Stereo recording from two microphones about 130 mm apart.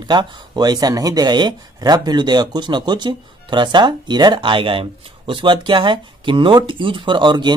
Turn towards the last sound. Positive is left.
turn(degrees=-35)  # may be behind; listen again after turning